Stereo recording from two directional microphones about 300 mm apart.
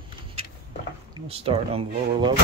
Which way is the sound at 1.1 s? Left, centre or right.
Centre.